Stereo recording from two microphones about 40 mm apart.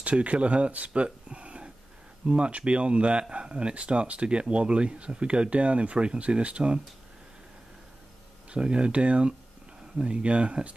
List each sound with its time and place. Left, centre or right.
0.0 s speech: right
8.5 s speech: right